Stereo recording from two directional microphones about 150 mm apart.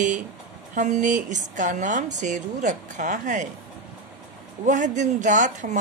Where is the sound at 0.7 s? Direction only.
55° right (ahead or behind).